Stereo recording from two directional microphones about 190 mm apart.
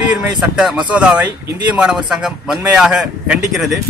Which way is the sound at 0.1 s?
5° right (ahead or behind).